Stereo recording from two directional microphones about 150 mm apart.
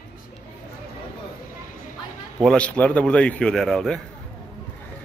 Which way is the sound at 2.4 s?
5° left (ahead or behind).